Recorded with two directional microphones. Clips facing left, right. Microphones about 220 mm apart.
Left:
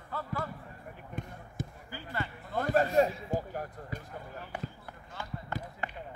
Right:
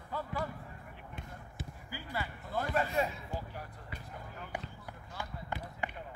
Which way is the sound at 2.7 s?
40° left (ahead or behind).